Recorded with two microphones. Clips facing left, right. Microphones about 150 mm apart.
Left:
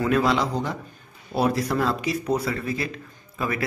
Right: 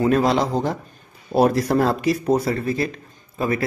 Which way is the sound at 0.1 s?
40° right (ahead or behind).